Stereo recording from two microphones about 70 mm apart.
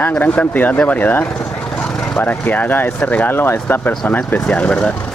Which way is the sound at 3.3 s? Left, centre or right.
Left.